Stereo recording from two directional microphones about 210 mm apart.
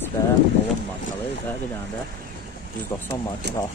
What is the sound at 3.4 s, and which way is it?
Speech, 50° right (ahead or behind).